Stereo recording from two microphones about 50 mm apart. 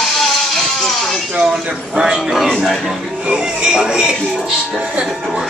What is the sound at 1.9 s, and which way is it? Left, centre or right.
Speech, centre.